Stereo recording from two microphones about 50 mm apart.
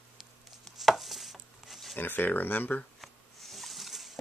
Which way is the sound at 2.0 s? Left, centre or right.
Left.